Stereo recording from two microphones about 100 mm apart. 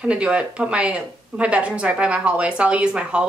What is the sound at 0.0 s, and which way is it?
Speech, 10° right (ahead or behind).